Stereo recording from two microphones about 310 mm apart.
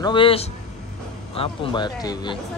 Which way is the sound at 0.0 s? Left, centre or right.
Centre.